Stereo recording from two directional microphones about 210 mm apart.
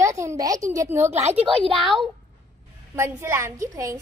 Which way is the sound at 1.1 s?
30° right (ahead or behind).